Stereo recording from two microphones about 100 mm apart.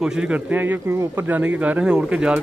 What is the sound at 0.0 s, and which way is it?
Speech, 5° right (ahead or behind).